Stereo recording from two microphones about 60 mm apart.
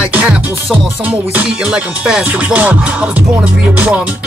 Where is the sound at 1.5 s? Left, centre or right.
Centre.